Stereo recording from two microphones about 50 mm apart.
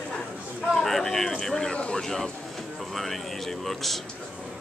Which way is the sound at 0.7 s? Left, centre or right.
Centre.